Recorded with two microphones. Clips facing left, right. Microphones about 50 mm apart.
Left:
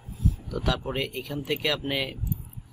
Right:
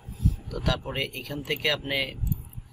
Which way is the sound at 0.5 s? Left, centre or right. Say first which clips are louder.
Left 2 dB; centre.